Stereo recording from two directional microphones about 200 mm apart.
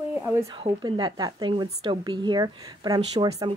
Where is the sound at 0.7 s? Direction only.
20° right (ahead or behind).